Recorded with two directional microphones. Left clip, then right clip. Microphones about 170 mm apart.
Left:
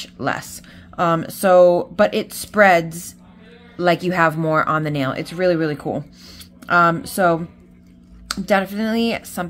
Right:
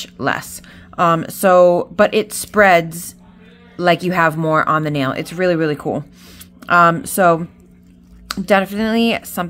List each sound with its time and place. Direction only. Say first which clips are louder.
0.0 s speech: right 4 dB; 20° right (ahead or behind)